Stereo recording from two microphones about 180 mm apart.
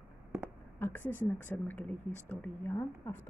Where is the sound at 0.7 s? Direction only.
10° left (ahead or behind).